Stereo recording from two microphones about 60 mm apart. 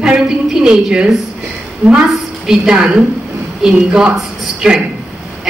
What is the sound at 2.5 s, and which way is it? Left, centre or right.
A woman's voice, centre.